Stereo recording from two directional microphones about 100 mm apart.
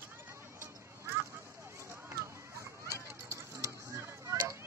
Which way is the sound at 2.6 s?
30° right (ahead or behind).